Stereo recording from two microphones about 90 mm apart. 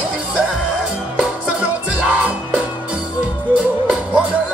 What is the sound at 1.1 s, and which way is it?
Music, 15° right (ahead or behind).